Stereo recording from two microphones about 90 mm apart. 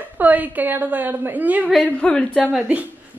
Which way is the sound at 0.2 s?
20° right (ahead or behind).